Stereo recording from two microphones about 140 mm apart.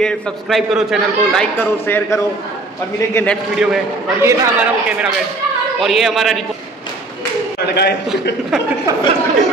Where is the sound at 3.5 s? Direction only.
5° right (ahead or behind).